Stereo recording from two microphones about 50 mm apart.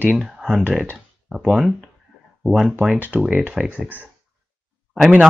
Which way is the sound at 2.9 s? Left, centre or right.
Right.